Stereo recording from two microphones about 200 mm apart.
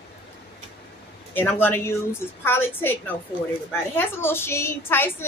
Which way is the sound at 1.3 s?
10° left (ahead or behind).